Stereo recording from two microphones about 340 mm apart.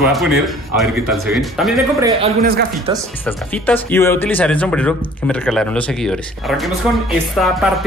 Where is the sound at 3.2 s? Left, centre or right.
Centre.